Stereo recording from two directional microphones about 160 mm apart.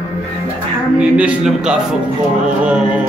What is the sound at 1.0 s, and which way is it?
Speech, 5° right (ahead or behind).